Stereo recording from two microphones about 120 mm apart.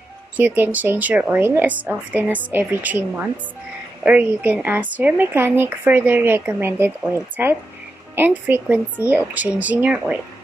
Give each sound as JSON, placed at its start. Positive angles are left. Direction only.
{"t": 0.4, "sound": "a woman's voice", "side_deg": -15}